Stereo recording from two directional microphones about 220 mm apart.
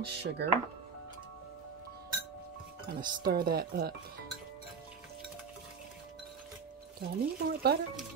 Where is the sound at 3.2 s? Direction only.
45° right (ahead or behind).